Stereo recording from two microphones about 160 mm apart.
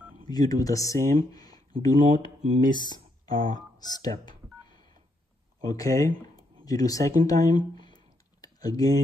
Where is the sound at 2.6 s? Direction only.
25° left (ahead or behind).